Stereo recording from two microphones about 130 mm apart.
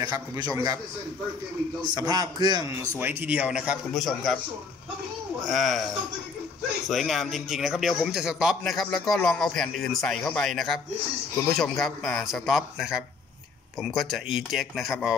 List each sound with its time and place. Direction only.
0.0 s a man's voice: 30° right (ahead or behind)
2.0 s a man's voice: 30° right (ahead or behind)
3.0 s speech: 15° right (ahead or behind); by 4.4 s centre (ahead or behind)
5.4 s a man's voice: centre (ahead or behind)
6.9 s a man's voice: centre (ahead or behind)